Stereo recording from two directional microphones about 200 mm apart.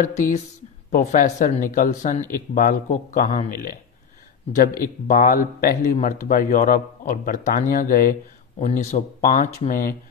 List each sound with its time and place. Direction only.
0.9 s speech: 35° left (ahead or behind)
8.5 s speech: 35° left (ahead or behind)